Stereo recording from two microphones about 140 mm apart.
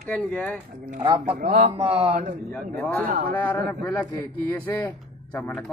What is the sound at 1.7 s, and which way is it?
Speech, 40° right (ahead or behind).